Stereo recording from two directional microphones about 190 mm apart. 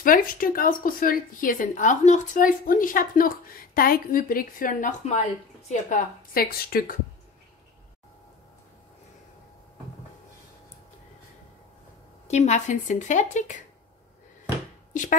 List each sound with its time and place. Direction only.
0.0 s a woman's voice: 45° left (ahead or behind)
12.3 s speech: 35° left (ahead or behind)